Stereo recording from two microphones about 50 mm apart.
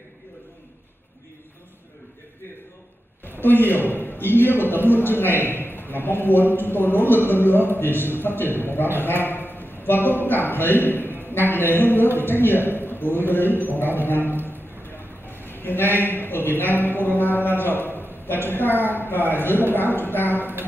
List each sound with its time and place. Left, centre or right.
3.3 s a man's voice: left